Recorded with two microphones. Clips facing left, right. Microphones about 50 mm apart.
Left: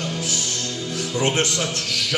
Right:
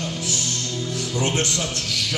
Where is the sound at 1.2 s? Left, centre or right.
Left.